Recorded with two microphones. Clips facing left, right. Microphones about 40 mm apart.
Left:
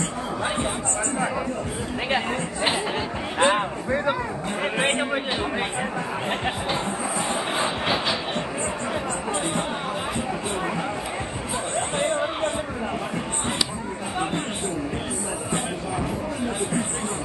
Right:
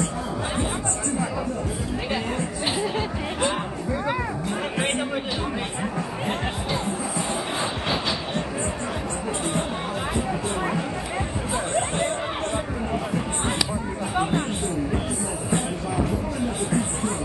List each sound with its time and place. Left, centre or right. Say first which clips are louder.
2.0 s chatter: left 3 dB; left
3.3 s music: left 7 dB; left
4.7 s a sound: left 3 dB; left